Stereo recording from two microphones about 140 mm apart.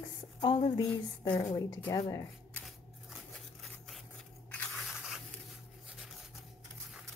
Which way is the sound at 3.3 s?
Centre (ahead or behind).